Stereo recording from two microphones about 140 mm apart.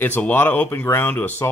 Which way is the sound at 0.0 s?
10° left (ahead or behind).